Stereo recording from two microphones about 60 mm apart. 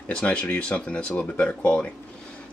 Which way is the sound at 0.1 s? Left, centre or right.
Centre.